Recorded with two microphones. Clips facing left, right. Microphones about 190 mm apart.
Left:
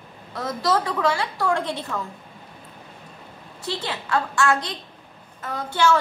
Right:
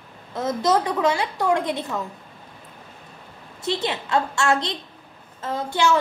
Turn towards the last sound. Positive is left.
turn(degrees=-15)  # may be behind; listen again after turning